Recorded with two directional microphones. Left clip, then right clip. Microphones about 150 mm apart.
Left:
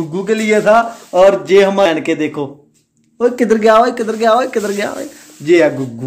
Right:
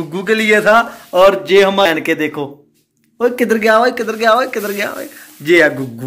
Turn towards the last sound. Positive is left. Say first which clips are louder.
# even
turn(degrees=0)  # may be behind; listen again after turning